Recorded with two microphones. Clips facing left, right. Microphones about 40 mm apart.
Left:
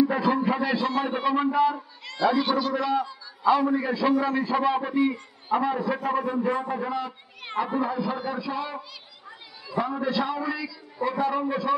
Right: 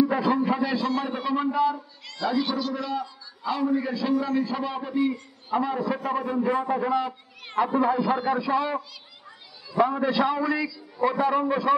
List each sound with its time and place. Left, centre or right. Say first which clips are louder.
0.0 s a man's voice: even; centre
0.7 s a man's voice: left 1 dB; left; by 8.7 s centre
9.8 s a man's voice: right 4 dB; centre